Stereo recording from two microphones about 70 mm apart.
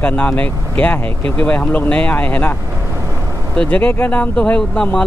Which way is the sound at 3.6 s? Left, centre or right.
Centre.